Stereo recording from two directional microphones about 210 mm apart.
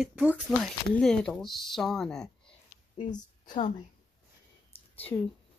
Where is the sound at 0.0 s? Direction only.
5° right (ahead or behind).